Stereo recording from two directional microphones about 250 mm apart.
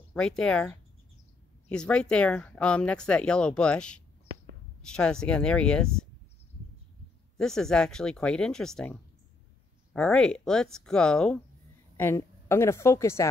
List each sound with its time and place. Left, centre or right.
0.1 s speech: centre
7.3 s speech: centre
9.9 s a woman's voice: centre